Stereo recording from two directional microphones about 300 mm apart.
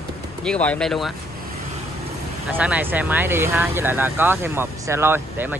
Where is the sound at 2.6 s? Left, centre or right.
Centre.